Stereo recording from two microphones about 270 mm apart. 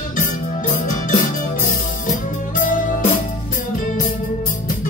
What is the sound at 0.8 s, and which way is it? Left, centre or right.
Music, left.